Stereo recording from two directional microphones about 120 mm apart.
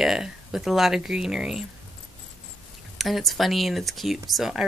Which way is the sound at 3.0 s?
Centre (ahead or behind).